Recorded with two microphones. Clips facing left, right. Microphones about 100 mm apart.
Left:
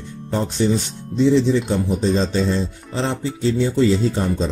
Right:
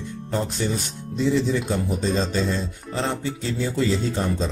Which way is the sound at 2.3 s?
30° left (ahead or behind).